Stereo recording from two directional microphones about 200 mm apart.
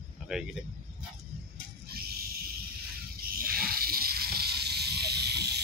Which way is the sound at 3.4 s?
45° right (ahead or behind).